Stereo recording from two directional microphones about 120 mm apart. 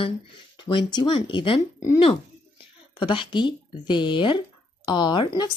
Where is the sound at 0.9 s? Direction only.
40° left (ahead or behind).